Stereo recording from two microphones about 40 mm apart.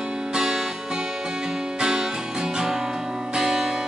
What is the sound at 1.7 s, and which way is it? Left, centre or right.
Music, centre.